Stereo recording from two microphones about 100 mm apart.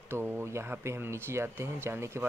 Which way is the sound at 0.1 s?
25° right (ahead or behind).